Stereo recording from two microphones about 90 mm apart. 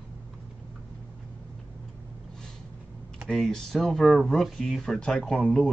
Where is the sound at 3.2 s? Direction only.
5° left (ahead or behind).